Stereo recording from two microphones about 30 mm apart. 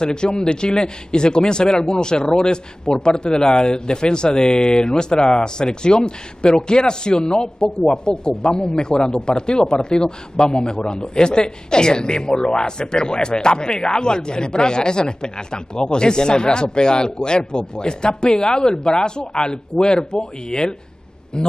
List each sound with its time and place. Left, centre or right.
0.0 s speech: left